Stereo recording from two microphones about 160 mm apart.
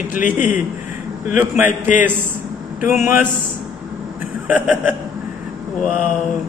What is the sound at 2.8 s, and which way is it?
Speech, 15° right (ahead or behind).